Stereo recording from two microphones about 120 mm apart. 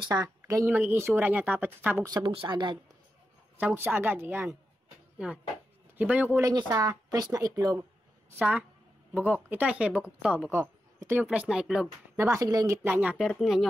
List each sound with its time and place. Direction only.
0.0 s a woman's voice: 30° right (ahead or behind)
2.0 s speech: 40° right (ahead or behind)
3.5 s speech: 15° right (ahead or behind)
5.9 s speech: 10° right (ahead or behind)
6.4 s speech: 30° right (ahead or behind)
8.4 s speech: 15° right (ahead or behind)
10.5 s speech: 20° right (ahead or behind)
11.2 s speech: 5° right (ahead or behind)
12.2 s speech: 25° right (ahead or behind)
13.3 s speech: centre (ahead or behind)